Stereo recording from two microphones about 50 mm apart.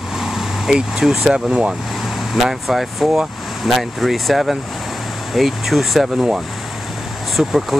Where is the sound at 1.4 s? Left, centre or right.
Right.